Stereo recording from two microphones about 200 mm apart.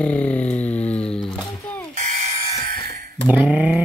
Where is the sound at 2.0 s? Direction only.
40° right (ahead or behind).